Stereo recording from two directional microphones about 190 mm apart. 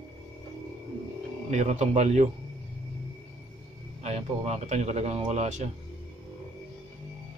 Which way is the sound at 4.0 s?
35° right (ahead or behind).